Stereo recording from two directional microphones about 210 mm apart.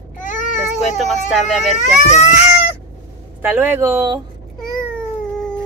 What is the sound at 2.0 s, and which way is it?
Speech, 35° left (ahead or behind).